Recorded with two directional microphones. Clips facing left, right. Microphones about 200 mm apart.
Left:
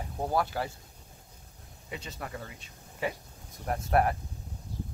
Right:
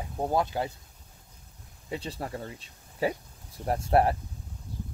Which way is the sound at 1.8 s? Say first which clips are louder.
Right 5 dB; 35° right (ahead or behind).